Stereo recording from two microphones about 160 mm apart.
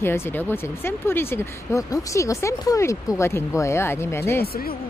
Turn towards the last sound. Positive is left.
turn(degrees=70)  # may be behind; listen again after turning